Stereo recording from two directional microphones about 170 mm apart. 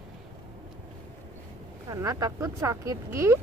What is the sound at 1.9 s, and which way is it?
Speech, 20° right (ahead or behind).